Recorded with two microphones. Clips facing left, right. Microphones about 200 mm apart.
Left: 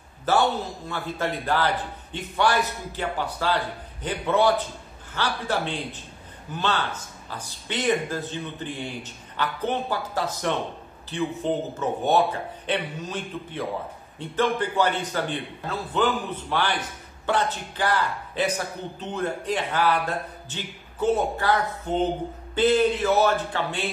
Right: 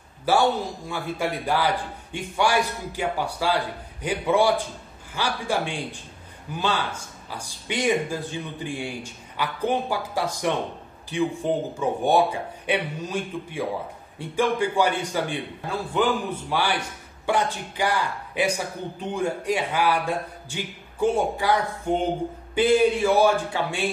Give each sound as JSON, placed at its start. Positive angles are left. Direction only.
{"t": 0.2, "sound": "a man's voice", "side_deg": -10}